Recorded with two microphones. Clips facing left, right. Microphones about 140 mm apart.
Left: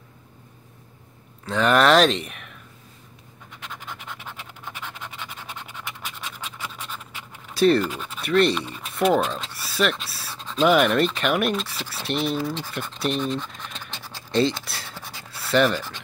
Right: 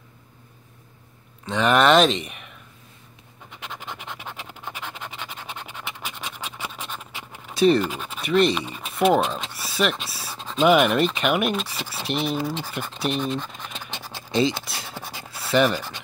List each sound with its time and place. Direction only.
1.4 s speech: centre (ahead or behind)
3.6 s scratch: 20° right (ahead or behind)
7.5 s speech: centre (ahead or behind)
7.9 s speech: 10° right (ahead or behind)
8.2 s speech: centre (ahead or behind)
8.6 s speech: 15° right (ahead or behind)
9.1 s speech: 5° right (ahead or behind)
9.6 s a sound: centre (ahead or behind)
10.6 s speech: 5° right (ahead or behind)
12.7 s scratch: centre (ahead or behind)
15.0 s writing: 20° right (ahead or behind)
15.3 s scratch: centre (ahead or behind)